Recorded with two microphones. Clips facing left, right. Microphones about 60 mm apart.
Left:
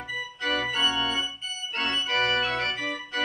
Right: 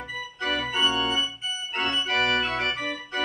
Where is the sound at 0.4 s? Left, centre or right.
Centre.